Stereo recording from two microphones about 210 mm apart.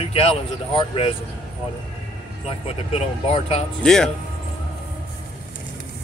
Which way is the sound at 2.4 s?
30° left (ahead or behind).